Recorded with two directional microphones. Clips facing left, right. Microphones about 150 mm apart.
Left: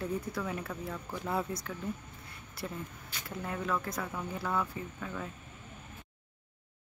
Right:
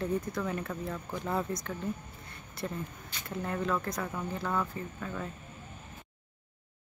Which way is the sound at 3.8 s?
5° left (ahead or behind).